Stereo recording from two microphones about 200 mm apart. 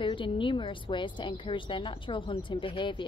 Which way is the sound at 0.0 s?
25° left (ahead or behind).